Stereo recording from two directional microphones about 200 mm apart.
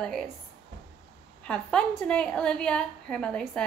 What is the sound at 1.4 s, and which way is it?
A woman's voice, 5° left (ahead or behind).